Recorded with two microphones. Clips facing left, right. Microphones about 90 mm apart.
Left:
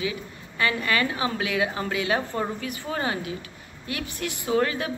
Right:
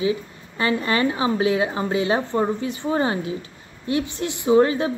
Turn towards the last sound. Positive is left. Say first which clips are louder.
# right 7 dB
turn(degrees=-25)  # may be behind; listen again after turning